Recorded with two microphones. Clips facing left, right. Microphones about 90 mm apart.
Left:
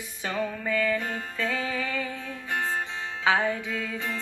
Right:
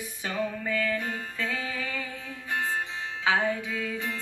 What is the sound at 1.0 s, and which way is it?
Music, 30° left (ahead or behind).